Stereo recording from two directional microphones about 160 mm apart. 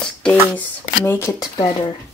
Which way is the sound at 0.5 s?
10° left (ahead or behind).